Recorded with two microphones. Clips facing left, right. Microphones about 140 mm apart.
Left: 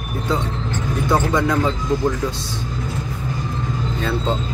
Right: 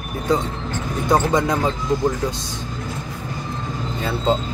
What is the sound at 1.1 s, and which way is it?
Speech, 20° right (ahead or behind).